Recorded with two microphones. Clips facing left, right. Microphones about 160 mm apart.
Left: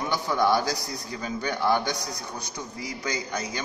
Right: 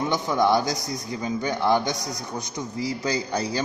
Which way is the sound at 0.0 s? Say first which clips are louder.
Right 3 dB; 20° right (ahead or behind).